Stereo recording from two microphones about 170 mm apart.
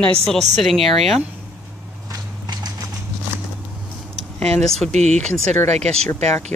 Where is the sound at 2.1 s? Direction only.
25° right (ahead or behind).